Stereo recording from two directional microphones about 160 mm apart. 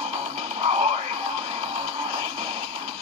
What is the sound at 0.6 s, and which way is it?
Music, 40° right (ahead or behind).